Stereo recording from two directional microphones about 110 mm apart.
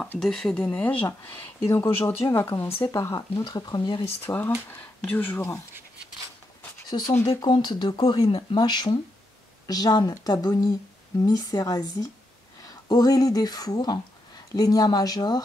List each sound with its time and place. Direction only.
0.2 s speech: 5° left (ahead or behind)
0.7 s speech: 15° left (ahead or behind)
3.4 s speech: 40° left (ahead or behind)
4.2 s speech: 15° left (ahead or behind)
6.9 s speech: 45° left (ahead or behind)
7.2 s speech: 35° left (ahead or behind)